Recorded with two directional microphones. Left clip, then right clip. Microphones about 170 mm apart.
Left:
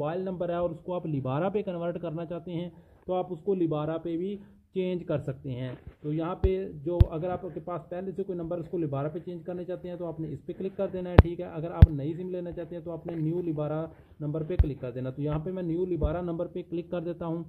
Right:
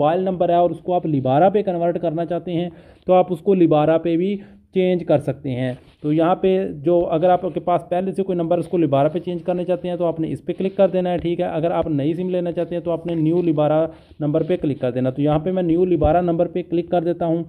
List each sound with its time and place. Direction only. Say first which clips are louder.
0.0 s speech: right 14 dB; 15° right (ahead or behind)
3.1 s speech: right 14 dB; 30° right (ahead or behind)
4.7 s speech: right 13 dB; 10° right (ahead or behind)